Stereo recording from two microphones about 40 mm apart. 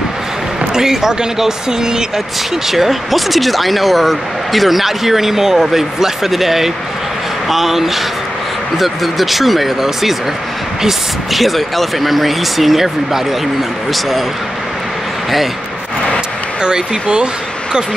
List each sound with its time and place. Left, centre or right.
0.6 s speech: centre
2.7 s speech: centre
16.6 s speech: right